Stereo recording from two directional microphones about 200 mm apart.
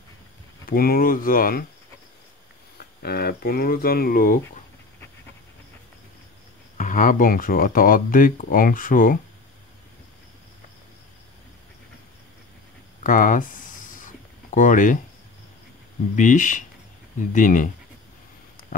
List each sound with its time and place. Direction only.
0.7 s speech: 45° left (ahead or behind)
3.0 s speech: 50° left (ahead or behind)
6.8 s speech: 40° left (ahead or behind)
13.0 s a sound: 40° left (ahead or behind)
16.2 s speech: 40° left (ahead or behind)
18.7 s a sound: 45° left (ahead or behind)